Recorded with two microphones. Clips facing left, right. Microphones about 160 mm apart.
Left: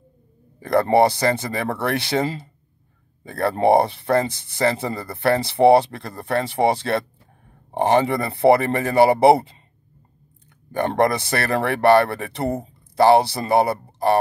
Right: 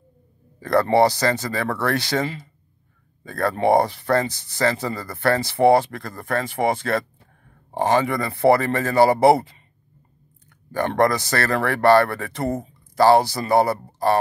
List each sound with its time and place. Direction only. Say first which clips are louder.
0.6 s speech: left 1 dB; 20° left (ahead or behind)
10.7 s speech: even; 25° left (ahead or behind)